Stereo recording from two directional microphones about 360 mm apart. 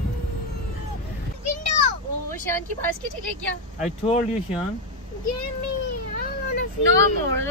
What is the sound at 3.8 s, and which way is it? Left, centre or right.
Speech, centre.